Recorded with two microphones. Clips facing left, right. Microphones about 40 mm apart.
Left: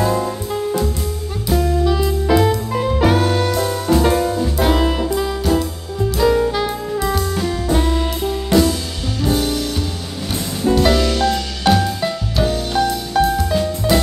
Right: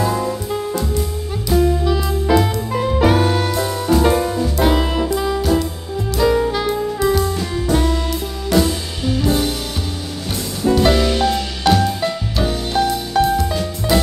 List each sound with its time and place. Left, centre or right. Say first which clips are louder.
0.0 s music: left 1 dB; centre
6.1 s saxophone: even; centre
10.8 s music: right 1 dB; centre
11.6 s music: even; centre